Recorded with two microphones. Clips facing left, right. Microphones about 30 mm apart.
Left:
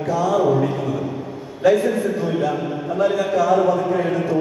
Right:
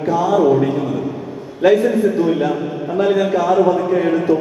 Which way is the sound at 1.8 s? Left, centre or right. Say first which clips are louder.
Right 5 dB; centre.